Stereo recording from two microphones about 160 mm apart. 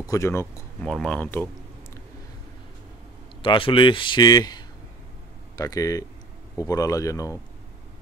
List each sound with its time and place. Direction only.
0.1 s speech: 15° left (ahead or behind)
0.8 s speech: 5° left (ahead or behind)
3.4 s a man's voice: 35° left (ahead or behind)